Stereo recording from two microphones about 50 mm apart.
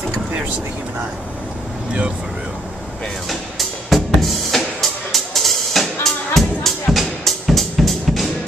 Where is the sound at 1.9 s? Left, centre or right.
Right.